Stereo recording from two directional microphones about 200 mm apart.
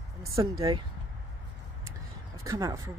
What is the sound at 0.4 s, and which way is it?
Speech, 20° right (ahead or behind).